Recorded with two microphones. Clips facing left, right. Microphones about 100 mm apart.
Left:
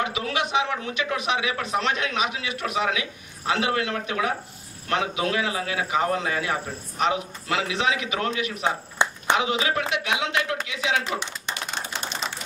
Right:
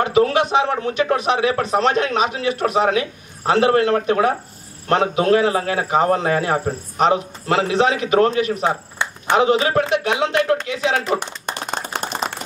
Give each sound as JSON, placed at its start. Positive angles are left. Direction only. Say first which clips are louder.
{"t": 0.0, "sound": "a man's voice", "louder": "right 10 dB", "side_deg": -40}
{"t": 10.7, "sound": "clapping", "louder": "right 6 dB", "side_deg": -40}